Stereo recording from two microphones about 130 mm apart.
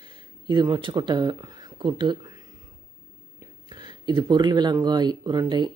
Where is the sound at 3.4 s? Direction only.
35° right (ahead or behind).